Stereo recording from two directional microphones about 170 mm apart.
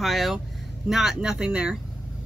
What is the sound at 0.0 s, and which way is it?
Speech, centre (ahead or behind).